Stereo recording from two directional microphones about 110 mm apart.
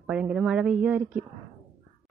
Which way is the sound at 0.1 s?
10° right (ahead or behind).